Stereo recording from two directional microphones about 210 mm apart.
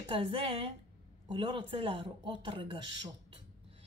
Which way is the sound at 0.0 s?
25° right (ahead or behind).